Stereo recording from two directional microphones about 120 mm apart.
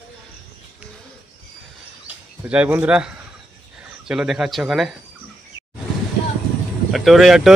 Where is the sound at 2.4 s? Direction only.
10° right (ahead or behind).